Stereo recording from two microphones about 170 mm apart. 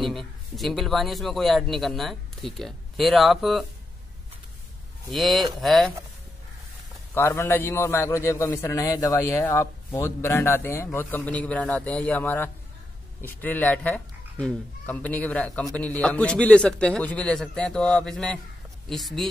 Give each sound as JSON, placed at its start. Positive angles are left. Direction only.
{"t": 0.0, "sound": "a man's voice", "side_deg": 0}
{"t": 5.1, "sound": "a man's voice", "side_deg": 0}
{"t": 7.2, "sound": "a man's voice", "side_deg": 15}